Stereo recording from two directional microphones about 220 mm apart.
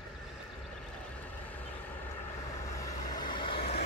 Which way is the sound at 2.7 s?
15° left (ahead or behind).